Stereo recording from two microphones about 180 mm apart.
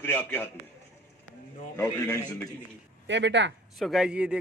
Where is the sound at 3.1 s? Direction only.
80° right.